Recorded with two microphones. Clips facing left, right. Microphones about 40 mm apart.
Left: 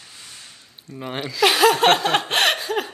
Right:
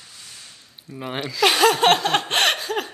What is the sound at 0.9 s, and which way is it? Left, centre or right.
Speech, centre.